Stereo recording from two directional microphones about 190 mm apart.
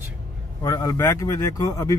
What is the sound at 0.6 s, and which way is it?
Speech, 20° left (ahead or behind).